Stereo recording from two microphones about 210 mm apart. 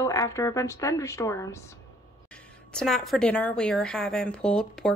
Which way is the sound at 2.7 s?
Centre (ahead or behind).